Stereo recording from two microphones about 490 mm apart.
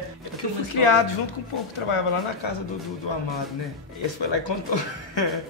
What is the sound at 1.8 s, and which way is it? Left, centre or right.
Speech, left.